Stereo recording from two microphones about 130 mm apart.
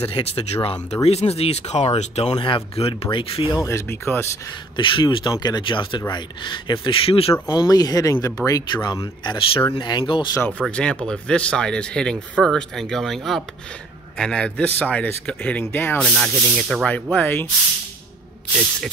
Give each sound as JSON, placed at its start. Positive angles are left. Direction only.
{"t": 0.0, "sound": "speech", "side_deg": 50}
{"t": 2.3, "sound": "speech", "side_deg": 40}
{"t": 3.5, "sound": "speech", "side_deg": 20}
{"t": 4.7, "sound": "speech", "side_deg": 40}
{"t": 7.4, "sound": "speech", "side_deg": 30}
{"t": 10.7, "sound": "speech", "side_deg": 10}
{"t": 16.1, "sound": "speech", "side_deg": 0}